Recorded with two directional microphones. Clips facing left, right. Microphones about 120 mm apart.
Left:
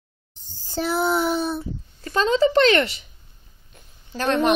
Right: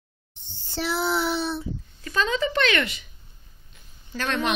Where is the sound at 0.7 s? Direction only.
45° left (ahead or behind).